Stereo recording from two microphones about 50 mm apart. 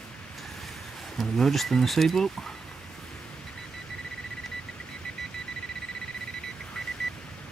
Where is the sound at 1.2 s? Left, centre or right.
Centre.